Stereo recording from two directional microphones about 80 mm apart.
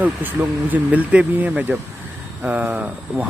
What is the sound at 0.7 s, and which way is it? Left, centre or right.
Speech, right.